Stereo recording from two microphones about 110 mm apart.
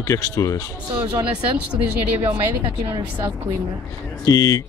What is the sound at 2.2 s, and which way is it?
Speech, 50° right (ahead or behind).